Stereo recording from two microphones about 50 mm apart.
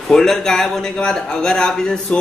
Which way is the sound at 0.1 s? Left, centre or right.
Centre.